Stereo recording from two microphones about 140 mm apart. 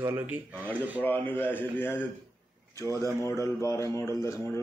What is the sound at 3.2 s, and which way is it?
Speech, 20° left (ahead or behind).